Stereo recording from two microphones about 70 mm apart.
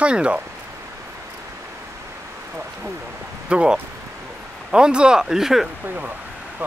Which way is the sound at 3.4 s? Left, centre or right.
Centre.